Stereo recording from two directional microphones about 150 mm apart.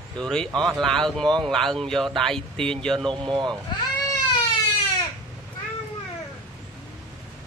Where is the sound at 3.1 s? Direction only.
30° right (ahead or behind).